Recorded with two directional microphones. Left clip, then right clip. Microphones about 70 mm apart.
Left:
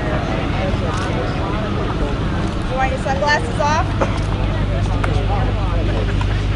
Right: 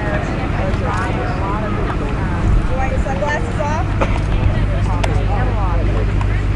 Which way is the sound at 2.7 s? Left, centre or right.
Left.